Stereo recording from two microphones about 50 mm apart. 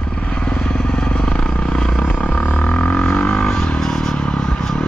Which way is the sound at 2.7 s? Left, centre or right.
Centre.